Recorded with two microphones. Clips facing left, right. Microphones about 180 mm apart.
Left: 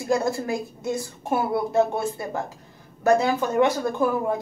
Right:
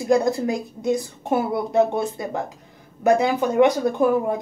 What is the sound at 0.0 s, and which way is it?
A woman's voice, 20° right (ahead or behind).